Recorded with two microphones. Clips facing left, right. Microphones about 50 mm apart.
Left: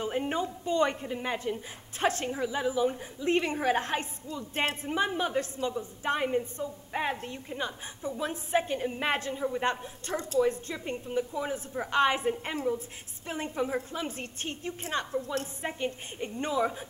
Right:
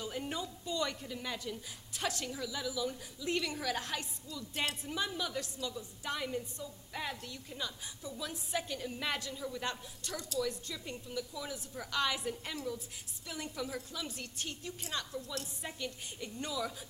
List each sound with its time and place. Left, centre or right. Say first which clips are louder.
0.0 s a woman's voice: left 9 dB; left